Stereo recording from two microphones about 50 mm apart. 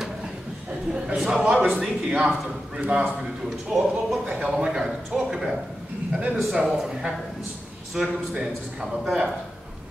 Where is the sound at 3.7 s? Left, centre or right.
Centre.